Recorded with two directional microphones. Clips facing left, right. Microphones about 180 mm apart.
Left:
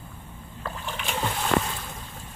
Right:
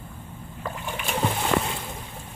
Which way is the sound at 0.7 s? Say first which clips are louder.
Right 2 dB; 15° right (ahead or behind).